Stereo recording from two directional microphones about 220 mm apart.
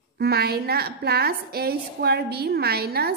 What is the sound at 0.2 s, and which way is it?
A woman's voice, 45° right (ahead or behind).